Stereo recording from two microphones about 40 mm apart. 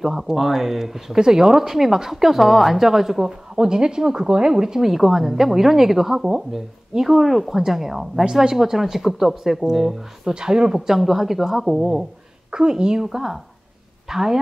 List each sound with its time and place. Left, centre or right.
0.0 s speech: centre
11.0 s speech: centre
12.4 s a woman's voice: right
13.0 s speech: centre